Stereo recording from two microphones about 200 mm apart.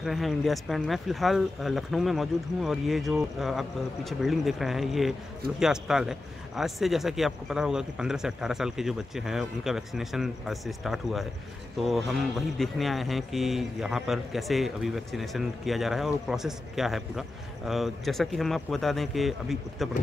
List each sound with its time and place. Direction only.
0.0 s speech: centre (ahead or behind)